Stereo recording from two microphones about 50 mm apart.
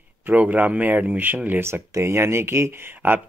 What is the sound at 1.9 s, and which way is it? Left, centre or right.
Speech, right.